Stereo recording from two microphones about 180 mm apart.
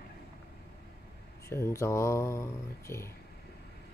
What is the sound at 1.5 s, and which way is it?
Mantra, 15° left (ahead or behind).